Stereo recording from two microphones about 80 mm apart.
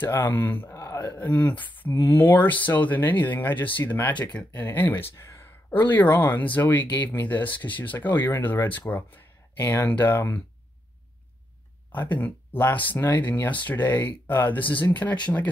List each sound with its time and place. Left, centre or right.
0.0 s speech: left
0.7 s a sound: left
0.9 s speech: left
5.2 s a sound: left
5.7 s speech: left
11.9 s speech: left